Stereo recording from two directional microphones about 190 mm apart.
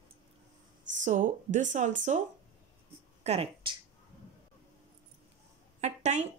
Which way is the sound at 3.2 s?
35° right (ahead or behind).